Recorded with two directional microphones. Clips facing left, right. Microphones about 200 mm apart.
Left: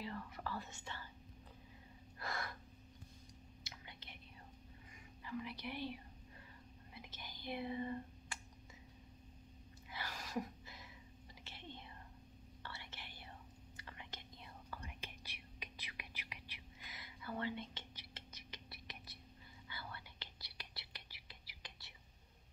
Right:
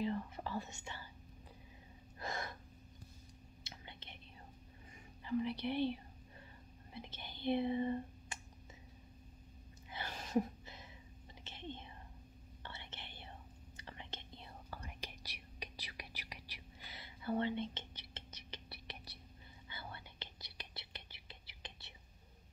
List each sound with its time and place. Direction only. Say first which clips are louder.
0.0 s whispering: right 7 dB; 20° right (ahead or behind)
2.1 s gasp: right 2 dB; 20° right (ahead or behind)
3.6 s whispering: right 3 dB; 25° right (ahead or behind)
5.2 s speech: right 8 dB; 30° right (ahead or behind)
6.9 s whispering: right 5 dB; 30° right (ahead or behind)
9.8 s a sound: right 2 dB; 25° right (ahead or behind)
11.4 s whispering: right 6 dB; 20° right (ahead or behind)